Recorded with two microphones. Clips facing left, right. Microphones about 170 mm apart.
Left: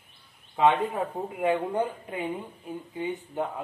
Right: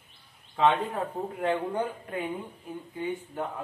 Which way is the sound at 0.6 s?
15° left (ahead or behind).